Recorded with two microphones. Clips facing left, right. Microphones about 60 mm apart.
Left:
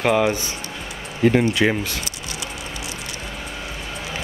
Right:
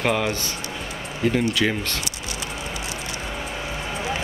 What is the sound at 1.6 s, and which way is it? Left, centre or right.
Speech, left.